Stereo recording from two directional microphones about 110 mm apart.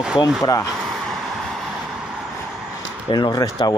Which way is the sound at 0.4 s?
30° left (ahead or behind).